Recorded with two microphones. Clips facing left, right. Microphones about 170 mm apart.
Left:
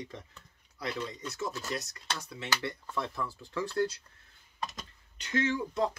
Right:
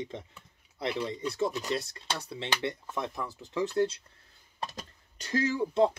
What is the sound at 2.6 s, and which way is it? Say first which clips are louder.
Speech: right 2 dB; 20° right (ahead or behind).